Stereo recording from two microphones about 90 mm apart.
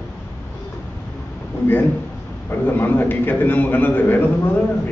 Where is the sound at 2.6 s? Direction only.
25° left (ahead or behind).